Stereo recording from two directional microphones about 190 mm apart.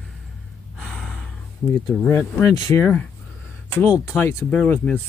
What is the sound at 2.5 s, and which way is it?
Speech, 20° left (ahead or behind).